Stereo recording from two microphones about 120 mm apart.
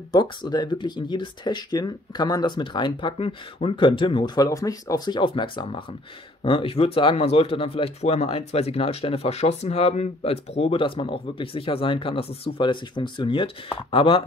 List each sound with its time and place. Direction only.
0.1 s speech: 35° left (ahead or behind)